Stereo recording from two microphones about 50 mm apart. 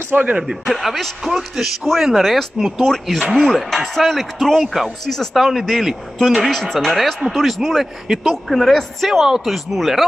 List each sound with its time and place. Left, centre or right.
0.1 s speech: right
0.7 s speech: centre
5.3 s speech: centre
6.4 s speech: centre
6.9 s speech: centre